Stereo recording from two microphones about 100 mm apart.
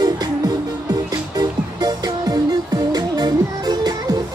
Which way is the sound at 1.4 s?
40° right (ahead or behind).